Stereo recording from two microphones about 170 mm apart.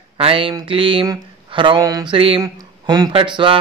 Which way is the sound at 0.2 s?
30° right (ahead or behind).